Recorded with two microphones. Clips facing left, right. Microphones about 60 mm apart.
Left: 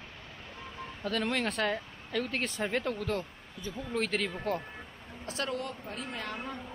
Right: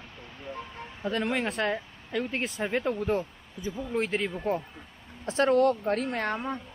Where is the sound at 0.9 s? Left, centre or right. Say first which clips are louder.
Right 3 dB; centre.